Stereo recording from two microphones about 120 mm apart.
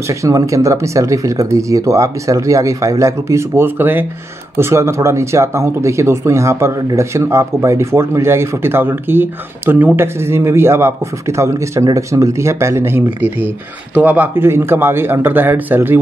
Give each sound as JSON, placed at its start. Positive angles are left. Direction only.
{"t": 0.1, "sound": "a man's voice", "side_deg": -25}